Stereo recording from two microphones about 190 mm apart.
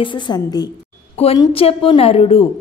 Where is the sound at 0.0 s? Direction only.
25° left (ahead or behind).